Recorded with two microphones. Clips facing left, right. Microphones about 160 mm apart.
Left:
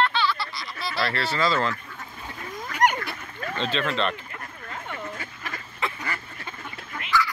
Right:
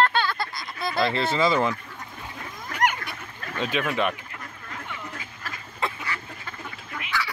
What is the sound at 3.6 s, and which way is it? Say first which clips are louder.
Speech: right 1 dB; 10° right (ahead or behind).